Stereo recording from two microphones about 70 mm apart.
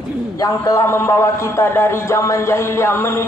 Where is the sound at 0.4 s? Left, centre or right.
Left.